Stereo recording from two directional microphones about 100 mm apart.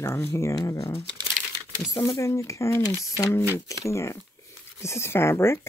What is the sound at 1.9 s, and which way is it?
Speech, 35° left (ahead or behind).